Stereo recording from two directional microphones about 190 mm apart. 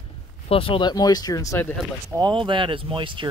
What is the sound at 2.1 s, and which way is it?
Speech, 25° right (ahead or behind).